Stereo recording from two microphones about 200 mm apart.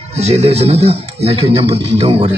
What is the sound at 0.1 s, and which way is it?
A man's voice, 30° right (ahead or behind).